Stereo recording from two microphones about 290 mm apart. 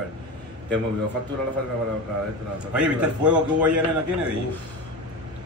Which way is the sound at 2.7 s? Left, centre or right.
Centre.